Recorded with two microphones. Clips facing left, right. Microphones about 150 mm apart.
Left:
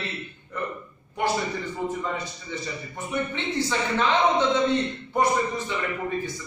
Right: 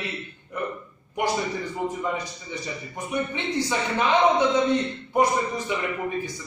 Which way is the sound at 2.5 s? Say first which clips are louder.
Even; 15° right (ahead or behind).